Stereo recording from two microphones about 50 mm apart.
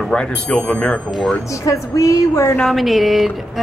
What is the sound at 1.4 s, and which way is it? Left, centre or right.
A woman's voice, left.